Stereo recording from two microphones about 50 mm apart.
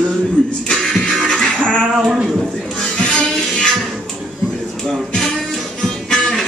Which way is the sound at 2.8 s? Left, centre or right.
Centre.